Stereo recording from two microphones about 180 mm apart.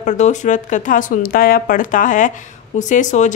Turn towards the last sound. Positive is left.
turn(degrees=45)  # may be behind; listen again after turning